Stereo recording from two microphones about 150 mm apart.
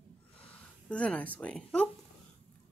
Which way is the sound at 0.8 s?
10° left (ahead or behind).